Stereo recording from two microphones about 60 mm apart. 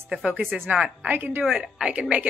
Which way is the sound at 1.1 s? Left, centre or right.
Right.